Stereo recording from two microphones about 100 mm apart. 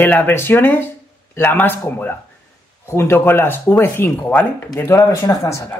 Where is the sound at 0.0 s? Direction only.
15° left (ahead or behind).